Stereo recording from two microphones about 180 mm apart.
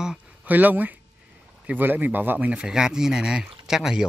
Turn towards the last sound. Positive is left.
turn(degrees=-5)  # may be behind; listen again after turning